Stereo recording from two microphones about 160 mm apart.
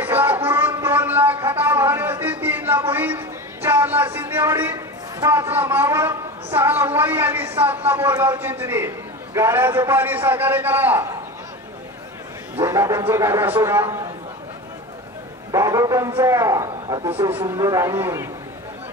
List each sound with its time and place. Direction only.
0.0 s a sound: 10° right (ahead or behind)
8.2 s a man's voice: 10° right (ahead or behind)
12.5 s a man's voice: 20° right (ahead or behind)
15.5 s a man's voice: 20° right (ahead or behind)